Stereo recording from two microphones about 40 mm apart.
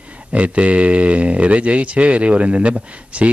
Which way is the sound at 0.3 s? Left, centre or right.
Right.